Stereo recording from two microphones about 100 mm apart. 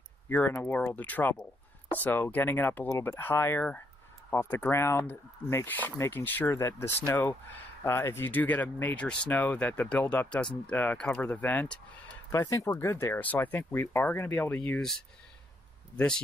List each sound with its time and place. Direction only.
0.3 s speech: 15° left (ahead or behind)
12.4 s speech: 35° left (ahead or behind); by 14.8 s 15° left (ahead or behind)